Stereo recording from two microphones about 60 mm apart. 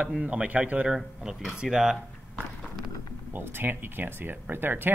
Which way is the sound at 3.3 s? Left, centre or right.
Right.